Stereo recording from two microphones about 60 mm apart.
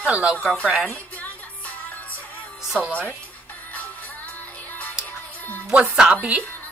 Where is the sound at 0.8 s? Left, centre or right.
Left.